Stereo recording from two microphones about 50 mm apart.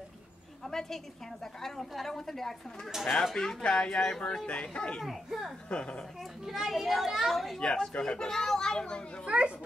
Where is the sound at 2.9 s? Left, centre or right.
Centre.